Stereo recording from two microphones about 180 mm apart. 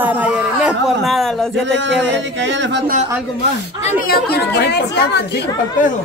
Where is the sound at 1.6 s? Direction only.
90° right.